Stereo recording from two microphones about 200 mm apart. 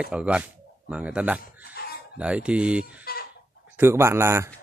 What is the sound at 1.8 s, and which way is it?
Chicken, 50° left (ahead or behind).